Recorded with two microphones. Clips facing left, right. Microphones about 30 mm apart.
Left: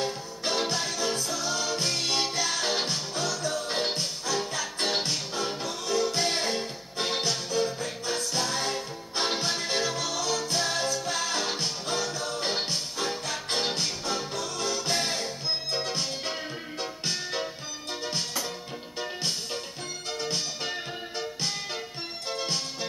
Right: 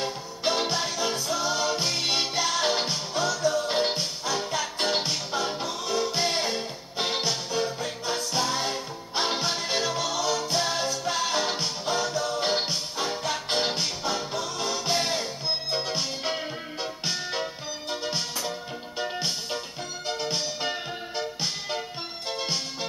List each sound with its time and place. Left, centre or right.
0.0 s music: centre